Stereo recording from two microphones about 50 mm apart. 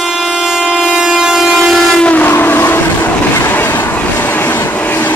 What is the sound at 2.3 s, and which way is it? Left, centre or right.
Train, left.